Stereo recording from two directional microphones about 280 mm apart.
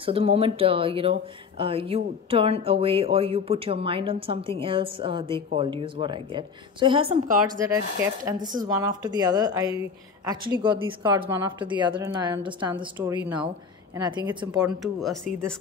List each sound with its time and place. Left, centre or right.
0.0 s speech: right
14.6 s speech: centre